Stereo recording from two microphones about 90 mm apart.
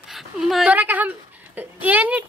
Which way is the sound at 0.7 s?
20° right (ahead or behind).